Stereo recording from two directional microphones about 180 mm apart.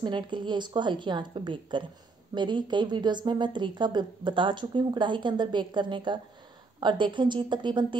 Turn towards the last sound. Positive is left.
turn(degrees=-25)  # may be behind; listen again after turning